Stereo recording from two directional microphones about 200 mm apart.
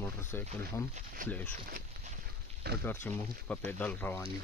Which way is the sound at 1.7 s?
40° right (ahead or behind).